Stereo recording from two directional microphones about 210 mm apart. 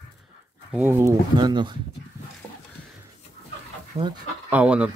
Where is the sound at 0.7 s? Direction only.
10° right (ahead or behind).